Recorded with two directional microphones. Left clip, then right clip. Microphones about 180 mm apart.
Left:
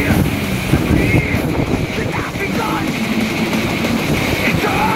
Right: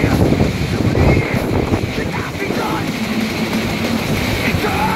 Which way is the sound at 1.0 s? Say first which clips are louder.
Right 1 dB; 25° left (ahead or behind).